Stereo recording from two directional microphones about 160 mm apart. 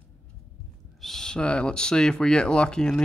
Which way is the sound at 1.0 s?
5° left (ahead or behind).